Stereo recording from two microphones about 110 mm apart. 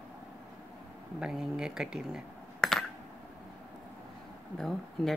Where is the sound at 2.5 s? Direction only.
Centre (ahead or behind).